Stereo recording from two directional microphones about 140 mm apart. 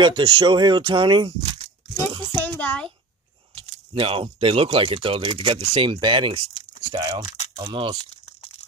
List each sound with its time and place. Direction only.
0.0 s speech: 35° right (ahead or behind)
2.3 s a child's voice: 15° left (ahead or behind)
3.5 s speech: 40° right (ahead or behind)
5.9 s speech: 35° right (ahead or behind)
7.2 s a sound: 50° left (ahead or behind)
7.5 s speech: 35° right (ahead or behind)